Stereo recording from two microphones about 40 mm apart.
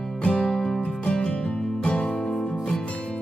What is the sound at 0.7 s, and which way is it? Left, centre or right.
Music, left.